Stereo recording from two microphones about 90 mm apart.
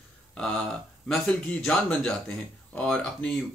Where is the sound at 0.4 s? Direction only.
10° left (ahead or behind).